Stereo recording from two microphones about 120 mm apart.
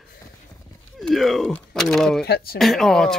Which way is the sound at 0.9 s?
Centre (ahead or behind).